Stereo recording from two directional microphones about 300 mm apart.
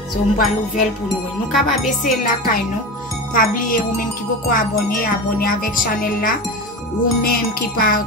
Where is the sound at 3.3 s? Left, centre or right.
Left.